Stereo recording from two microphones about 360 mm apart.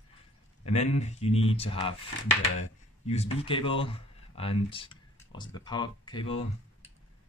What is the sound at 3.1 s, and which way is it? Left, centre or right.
Speech, centre.